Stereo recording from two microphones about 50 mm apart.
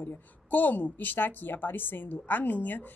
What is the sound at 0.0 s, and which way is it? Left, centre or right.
A woman's voice, left.